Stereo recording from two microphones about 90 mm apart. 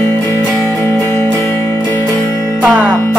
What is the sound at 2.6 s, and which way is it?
Speech, 15° right (ahead or behind).